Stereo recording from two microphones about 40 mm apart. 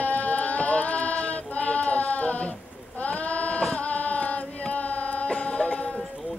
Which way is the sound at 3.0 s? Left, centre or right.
Left.